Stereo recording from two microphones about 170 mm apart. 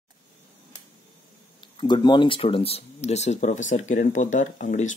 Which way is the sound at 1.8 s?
25° left (ahead or behind).